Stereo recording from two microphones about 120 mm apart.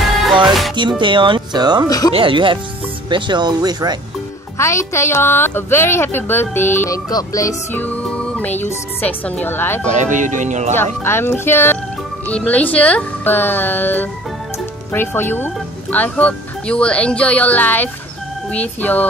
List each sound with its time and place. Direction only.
0.7 s speech: 40° right (ahead or behind)
1.9 s speech: 30° left (ahead or behind)
2.1 s speech: 45° right (ahead or behind)
4.6 s a woman's voice: 25° left (ahead or behind)
7.1 s a woman's voice: 30° left (ahead or behind)
7.7 s speech: 15° left (ahead or behind)
9.8 s speech: 90° right
10.8 s a woman's voice: 20° left (ahead or behind)